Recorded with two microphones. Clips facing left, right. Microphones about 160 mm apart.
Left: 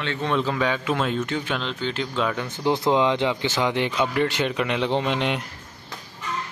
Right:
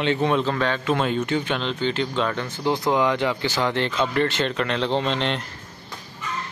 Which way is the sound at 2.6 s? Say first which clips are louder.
Left 1 dB; 20° left (ahead or behind).